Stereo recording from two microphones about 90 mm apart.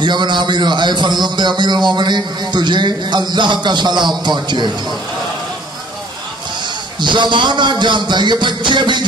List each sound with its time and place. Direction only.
0.0 s a man's voice: 55° right (ahead or behind)
7.0 s a man's voice: 60° right (ahead or behind)